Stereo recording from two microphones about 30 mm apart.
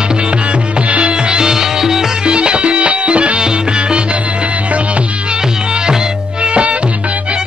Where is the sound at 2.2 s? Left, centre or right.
Right.